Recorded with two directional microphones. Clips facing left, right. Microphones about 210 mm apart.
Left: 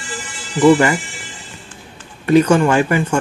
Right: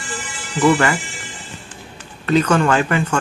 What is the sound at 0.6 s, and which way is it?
Speech, 20° left (ahead or behind).